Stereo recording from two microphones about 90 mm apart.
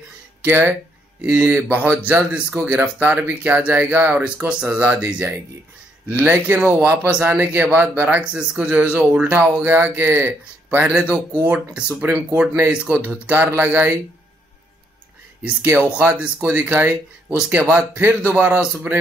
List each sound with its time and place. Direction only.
0.5 s speech: 20° right (ahead or behind)
4.6 s speech: 25° right (ahead or behind)
15.4 s speech: 15° right (ahead or behind)